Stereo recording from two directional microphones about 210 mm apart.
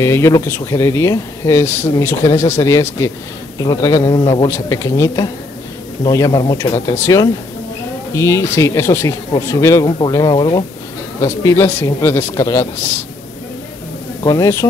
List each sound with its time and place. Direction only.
0.0 s speech: 15° left (ahead or behind)
14.2 s speech: 15° left (ahead or behind)